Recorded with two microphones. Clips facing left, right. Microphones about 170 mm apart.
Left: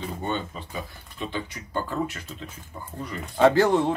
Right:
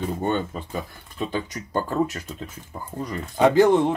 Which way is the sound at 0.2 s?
45° right (ahead or behind).